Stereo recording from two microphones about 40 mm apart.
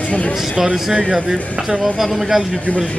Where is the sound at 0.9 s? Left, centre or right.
Centre.